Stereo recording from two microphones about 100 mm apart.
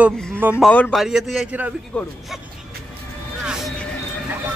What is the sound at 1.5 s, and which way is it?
Speech, 15° right (ahead or behind).